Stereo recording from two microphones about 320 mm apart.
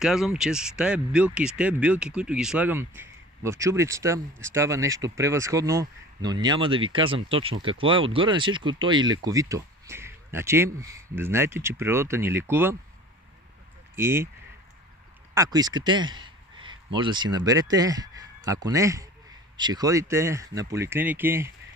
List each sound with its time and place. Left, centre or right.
0.0 s speech: centre
13.9 s speech: centre
15.3 s a man's voice: centre